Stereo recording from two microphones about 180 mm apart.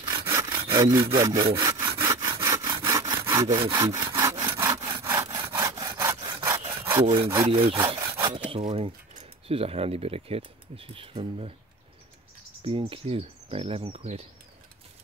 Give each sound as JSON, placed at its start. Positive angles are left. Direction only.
{"t": 0.2, "sound": "sawing", "side_deg": -20}
{"t": 7.7, "sound": "wood", "side_deg": -25}
{"t": 8.5, "sound": "speech", "side_deg": -35}
{"t": 12.6, "sound": "speech", "side_deg": -30}